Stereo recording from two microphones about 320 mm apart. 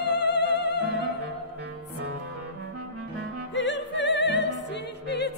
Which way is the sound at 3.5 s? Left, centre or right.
Left.